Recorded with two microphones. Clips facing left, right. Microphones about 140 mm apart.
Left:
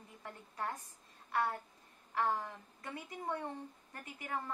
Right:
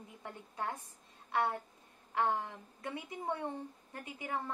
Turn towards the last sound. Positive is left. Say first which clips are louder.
# right 2 dB
turn(degrees=-20)  # may be behind; listen again after turning